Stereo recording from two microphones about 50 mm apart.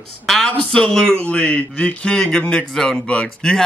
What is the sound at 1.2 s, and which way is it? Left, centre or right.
Speech, left.